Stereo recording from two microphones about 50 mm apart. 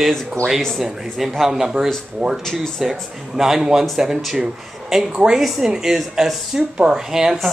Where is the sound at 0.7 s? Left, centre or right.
Centre.